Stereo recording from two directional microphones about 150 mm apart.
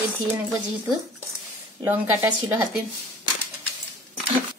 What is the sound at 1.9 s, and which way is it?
Speech, 10° right (ahead or behind).